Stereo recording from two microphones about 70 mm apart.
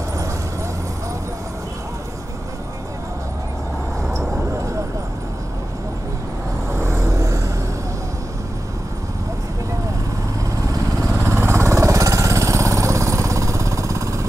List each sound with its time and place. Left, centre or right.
4.4 s vehicle: right
6.7 s vehicle: right
10.7 s lawn mower: right